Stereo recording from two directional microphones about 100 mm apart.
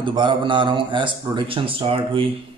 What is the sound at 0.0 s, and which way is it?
A man's voice, 55° right (ahead or behind).